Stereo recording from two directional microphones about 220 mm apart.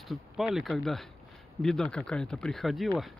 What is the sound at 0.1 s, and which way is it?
Speech, centre (ahead or behind).